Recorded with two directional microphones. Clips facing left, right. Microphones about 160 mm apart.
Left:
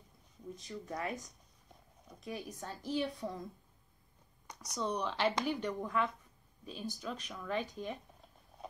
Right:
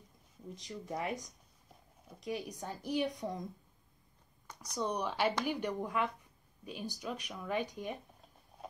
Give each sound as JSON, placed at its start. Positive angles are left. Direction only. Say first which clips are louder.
{"t": 0.7, "sound": "speech", "louder": "right 2 dB", "side_deg": -15}
{"t": 2.2, "sound": "speech", "louder": "right 3 dB", "side_deg": -15}
{"t": 4.7, "sound": "speech", "louder": "right 1 dB", "side_deg": -10}